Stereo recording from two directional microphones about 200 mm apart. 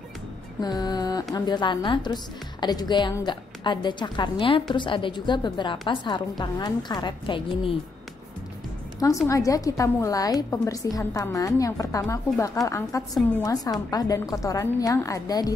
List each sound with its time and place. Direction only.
0.6 s music: 20° left (ahead or behind)
1.3 s a woman's voice: 20° left (ahead or behind)
9.3 s a woman's voice: 15° left (ahead or behind)